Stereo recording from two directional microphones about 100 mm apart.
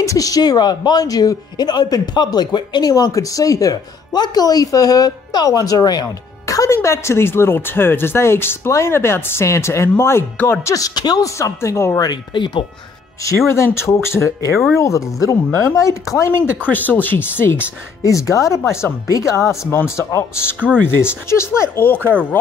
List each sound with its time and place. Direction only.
0.0 s speech: 35° left (ahead or behind)
12.0 s speech: 50° left (ahead or behind)
13.5 s speech: 25° left (ahead or behind)
16.6 s speech: 15° left (ahead or behind)
18.0 s speech: 30° left (ahead or behind)
20.5 s speech: 10° right (ahead or behind)
21.0 s speech: 25° left (ahead or behind)
21.9 s speech: 20° right (ahead or behind)